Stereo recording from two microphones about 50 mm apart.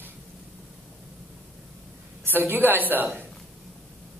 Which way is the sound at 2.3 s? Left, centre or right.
Right.